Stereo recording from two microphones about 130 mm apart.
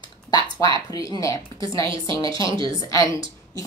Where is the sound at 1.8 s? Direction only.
35° right (ahead or behind).